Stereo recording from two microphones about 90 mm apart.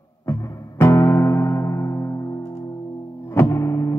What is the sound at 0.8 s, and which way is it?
Music, 30° left (ahead or behind).